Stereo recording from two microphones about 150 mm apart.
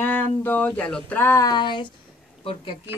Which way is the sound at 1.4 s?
30° left (ahead or behind).